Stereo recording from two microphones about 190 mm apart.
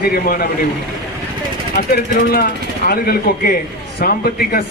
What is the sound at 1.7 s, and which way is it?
Speech, 55° left (ahead or behind).